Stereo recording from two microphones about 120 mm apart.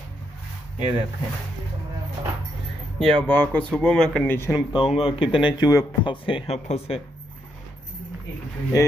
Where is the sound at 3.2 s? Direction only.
15° left (ahead or behind).